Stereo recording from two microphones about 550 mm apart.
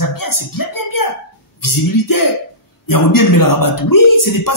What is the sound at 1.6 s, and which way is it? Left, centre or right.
Speech, left.